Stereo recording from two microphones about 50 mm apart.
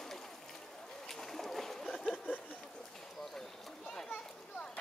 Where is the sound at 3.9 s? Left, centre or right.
Centre.